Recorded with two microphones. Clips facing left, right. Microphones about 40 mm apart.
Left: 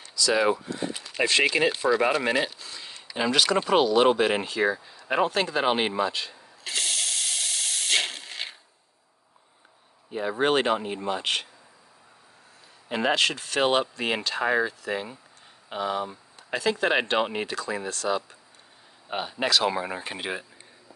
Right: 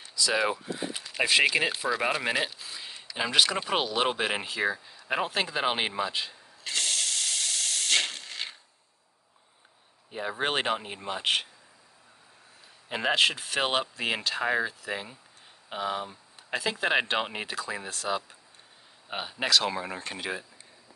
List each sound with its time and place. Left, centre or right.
0.0 s a sound: centre
0.4 s speech: centre
6.6 s hiss: centre
10.1 s speech: centre
12.8 s speech: centre
13.1 s speech: centre